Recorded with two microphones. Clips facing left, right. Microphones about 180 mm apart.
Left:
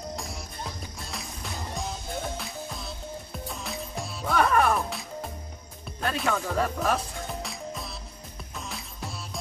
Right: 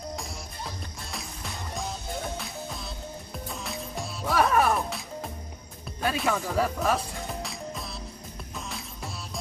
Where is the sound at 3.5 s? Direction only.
Centre (ahead or behind).